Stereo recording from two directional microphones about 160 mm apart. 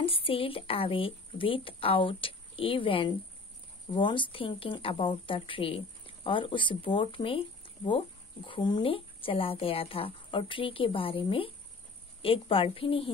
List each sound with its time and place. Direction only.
0.0 s a woman's voice: 35° left (ahead or behind)